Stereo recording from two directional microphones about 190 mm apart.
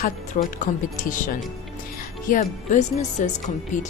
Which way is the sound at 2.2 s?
40° left (ahead or behind).